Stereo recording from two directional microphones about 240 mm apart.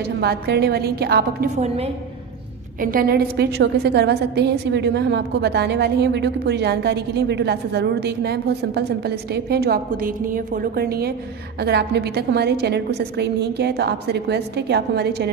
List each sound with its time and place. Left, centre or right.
0.2 s a woman's voice: right
2.8 s a woman's voice: right